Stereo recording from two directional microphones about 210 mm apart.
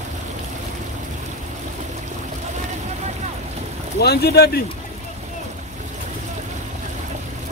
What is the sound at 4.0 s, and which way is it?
Speech, 50° left (ahead or behind).